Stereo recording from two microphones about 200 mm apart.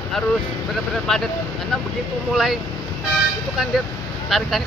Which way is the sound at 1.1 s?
Centre (ahead or behind).